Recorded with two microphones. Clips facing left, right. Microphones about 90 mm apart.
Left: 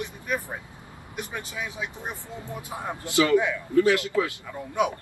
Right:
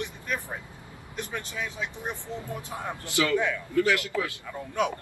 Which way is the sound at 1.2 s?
15° left (ahead or behind).